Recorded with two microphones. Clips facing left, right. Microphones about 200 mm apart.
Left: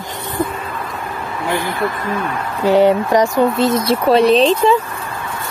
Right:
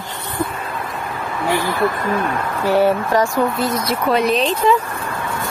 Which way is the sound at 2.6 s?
20° left (ahead or behind).